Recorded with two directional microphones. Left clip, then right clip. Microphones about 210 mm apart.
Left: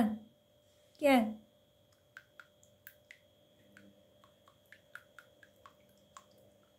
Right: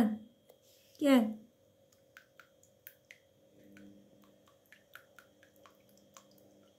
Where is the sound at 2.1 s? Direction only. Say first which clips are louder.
Left 4 dB; 10° right (ahead or behind).